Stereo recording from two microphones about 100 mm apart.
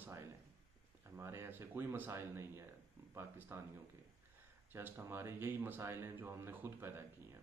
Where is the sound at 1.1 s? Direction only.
25° right (ahead or behind).